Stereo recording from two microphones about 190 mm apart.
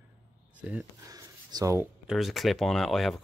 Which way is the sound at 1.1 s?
20° right (ahead or behind).